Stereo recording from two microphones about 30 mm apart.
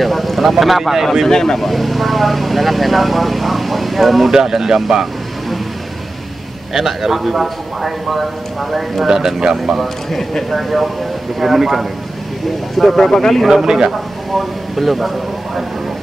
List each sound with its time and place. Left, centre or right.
0.0 s speech: centre
1.3 s speech: centre
1.6 s speech: centre
4.3 s a man's voice: centre
6.7 s a man's voice: centre
9.0 s a man's voice: centre
10.5 s a man's voice: centre
12.7 s speech: centre
13.5 s a man's voice: right
14.3 s speech: centre